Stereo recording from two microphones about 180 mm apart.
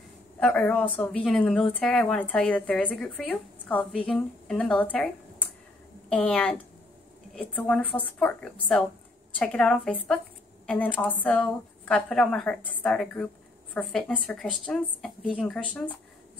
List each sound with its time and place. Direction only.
0.4 s a woman's voice: 5° left (ahead or behind)
11.2 s a woman's voice: 5° left (ahead or behind)